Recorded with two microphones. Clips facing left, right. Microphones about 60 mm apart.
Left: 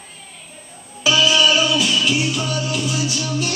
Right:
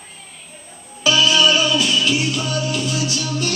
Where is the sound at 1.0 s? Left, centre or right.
Centre.